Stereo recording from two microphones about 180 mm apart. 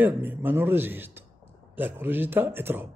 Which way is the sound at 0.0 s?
10° right (ahead or behind).